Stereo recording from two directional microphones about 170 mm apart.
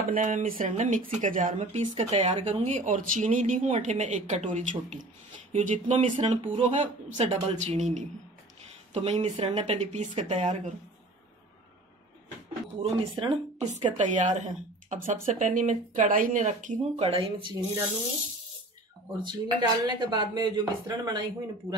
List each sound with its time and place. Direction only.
0.1 s a woman's voice: 50° right (ahead or behind)
12.8 s a woman's voice: 35° right (ahead or behind)
16.9 s speech: 35° right (ahead or behind)
19.2 s speech: 25° right (ahead or behind)